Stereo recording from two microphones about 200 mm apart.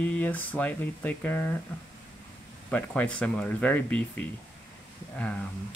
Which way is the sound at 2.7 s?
5° left (ahead or behind).